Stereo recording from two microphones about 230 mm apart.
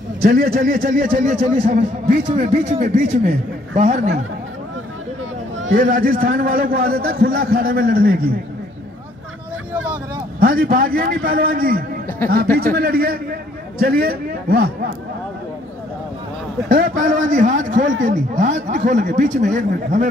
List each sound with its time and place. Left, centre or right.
0.2 s a man's voice: right
2.8 s speech: right
3.7 s speech: right
5.8 s a man's voice: right
10.4 s a man's voice: right
16.6 s a man's voice: right